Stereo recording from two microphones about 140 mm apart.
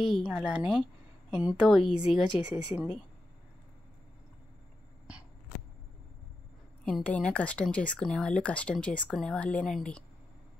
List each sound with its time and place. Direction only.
0.0 s speech: 5° right (ahead or behind)
6.8 s speech: 5° left (ahead or behind)